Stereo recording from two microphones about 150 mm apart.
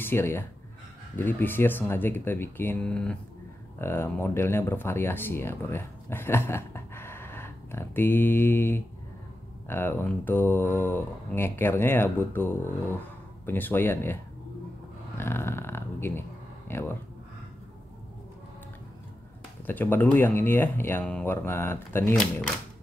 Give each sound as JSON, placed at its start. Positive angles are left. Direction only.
{"t": 0.0, "sound": "speech", "side_deg": 15}
{"t": 15.1, "sound": "a sound", "side_deg": 15}
{"t": 19.6, "sound": "speech", "side_deg": 15}